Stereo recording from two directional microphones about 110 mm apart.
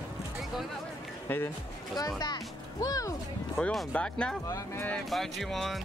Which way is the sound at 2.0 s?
35° left (ahead or behind).